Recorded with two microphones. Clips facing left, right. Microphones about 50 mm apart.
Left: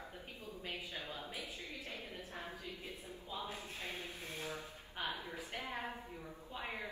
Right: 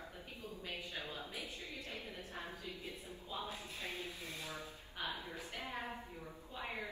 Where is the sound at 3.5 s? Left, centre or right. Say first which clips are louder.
Even; left.